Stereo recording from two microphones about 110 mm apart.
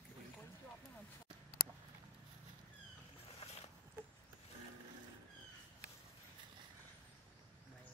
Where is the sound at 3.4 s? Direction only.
70° left (ahead or behind).